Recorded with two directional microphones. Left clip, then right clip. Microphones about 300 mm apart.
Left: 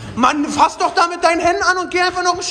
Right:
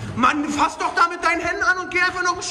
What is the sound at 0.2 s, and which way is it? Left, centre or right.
Speech, centre.